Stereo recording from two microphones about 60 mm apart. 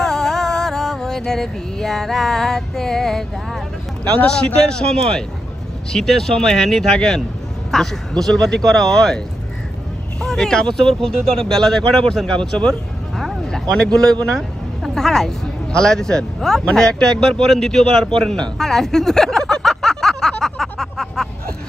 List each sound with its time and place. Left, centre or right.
0.0 s music: centre
4.6 s speech: centre
10.2 s a man's voice: centre